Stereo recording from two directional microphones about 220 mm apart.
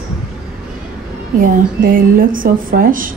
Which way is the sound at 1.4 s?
40° right (ahead or behind).